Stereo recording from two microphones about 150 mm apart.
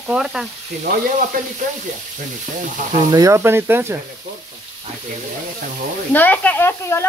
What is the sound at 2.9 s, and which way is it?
Speech, 25° right (ahead or behind).